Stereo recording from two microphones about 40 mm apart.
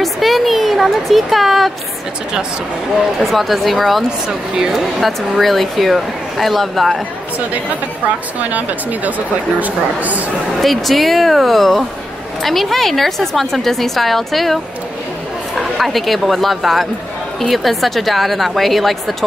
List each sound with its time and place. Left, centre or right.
0.0 s speech: centre
3.3 s a woman's voice: centre
4.3 s speech: centre
5.0 s a woman's voice: centre
8.4 s speech: right
10.6 s a woman's voice: centre